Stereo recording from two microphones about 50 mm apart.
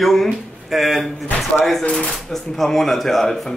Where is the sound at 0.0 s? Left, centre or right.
Centre.